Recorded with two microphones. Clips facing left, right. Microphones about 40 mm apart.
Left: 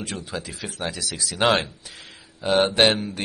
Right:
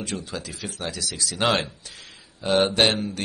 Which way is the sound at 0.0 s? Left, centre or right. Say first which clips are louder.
Even; centre.